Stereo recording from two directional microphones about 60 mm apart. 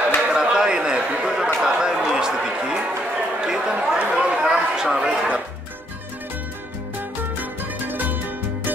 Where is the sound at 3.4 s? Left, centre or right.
Centre.